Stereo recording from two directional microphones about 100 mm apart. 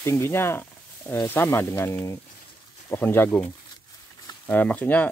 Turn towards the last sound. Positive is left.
turn(degrees=15)  # may be behind; listen again after turning